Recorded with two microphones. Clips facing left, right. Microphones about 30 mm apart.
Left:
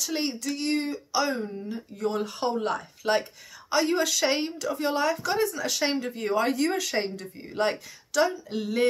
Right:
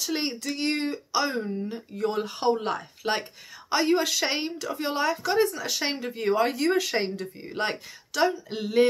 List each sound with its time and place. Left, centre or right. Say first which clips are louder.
0.0 s speech: even; centre